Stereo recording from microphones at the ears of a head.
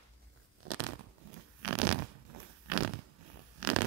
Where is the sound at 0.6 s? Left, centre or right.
Right.